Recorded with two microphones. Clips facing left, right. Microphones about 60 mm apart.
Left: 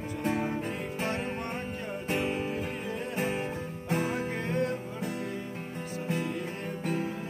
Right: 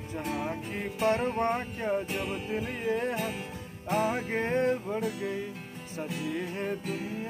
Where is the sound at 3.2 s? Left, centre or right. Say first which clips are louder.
Left 4 dB; left.